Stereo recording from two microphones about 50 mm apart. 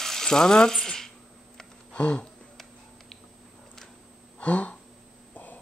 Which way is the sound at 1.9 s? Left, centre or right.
Left.